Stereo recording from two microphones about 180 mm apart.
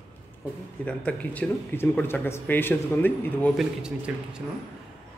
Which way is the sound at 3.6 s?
5° right (ahead or behind).